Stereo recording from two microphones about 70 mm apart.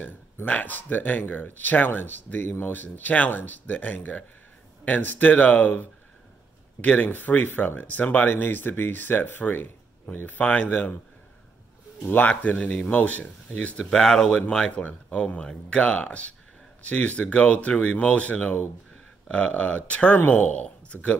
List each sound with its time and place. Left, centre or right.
0.5 s speech: left
12.0 s speech: left